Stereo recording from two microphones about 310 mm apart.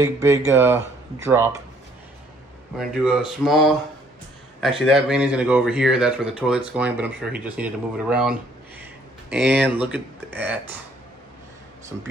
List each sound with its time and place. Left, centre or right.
0.0 s speech: centre
3.0 s speech: centre
11.9 s speech: centre